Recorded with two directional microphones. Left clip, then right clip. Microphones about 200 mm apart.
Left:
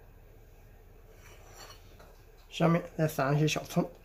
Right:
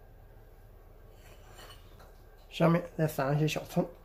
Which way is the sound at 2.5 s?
10° right (ahead or behind).